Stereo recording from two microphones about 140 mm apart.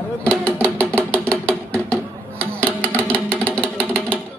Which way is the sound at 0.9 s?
15° right (ahead or behind).